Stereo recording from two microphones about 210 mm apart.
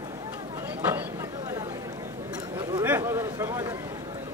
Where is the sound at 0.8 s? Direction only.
10° right (ahead or behind).